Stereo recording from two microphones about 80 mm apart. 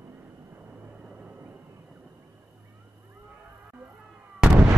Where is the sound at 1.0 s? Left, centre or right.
Right.